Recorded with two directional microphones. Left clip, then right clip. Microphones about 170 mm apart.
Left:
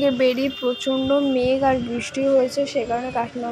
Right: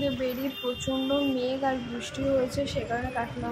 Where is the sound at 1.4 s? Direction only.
40° left (ahead or behind).